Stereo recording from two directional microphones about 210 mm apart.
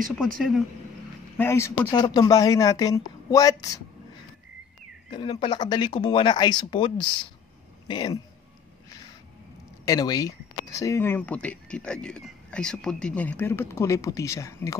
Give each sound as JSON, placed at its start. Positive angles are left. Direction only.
{"t": 0.4, "sound": "speech", "side_deg": 0}
{"t": 1.4, "sound": "speech", "side_deg": 15}
{"t": 5.1, "sound": "speech", "side_deg": 20}
{"t": 9.8, "sound": "speech", "side_deg": 15}